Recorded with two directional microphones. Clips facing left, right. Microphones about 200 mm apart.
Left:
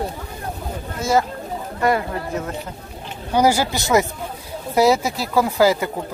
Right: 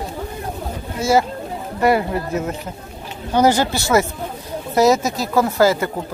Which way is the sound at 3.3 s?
10° left (ahead or behind).